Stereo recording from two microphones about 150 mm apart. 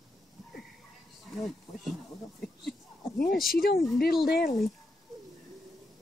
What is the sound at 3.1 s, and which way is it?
Speech, 75° left (ahead or behind).